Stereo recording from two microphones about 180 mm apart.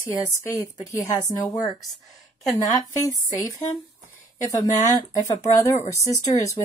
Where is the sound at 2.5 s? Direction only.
15° left (ahead or behind).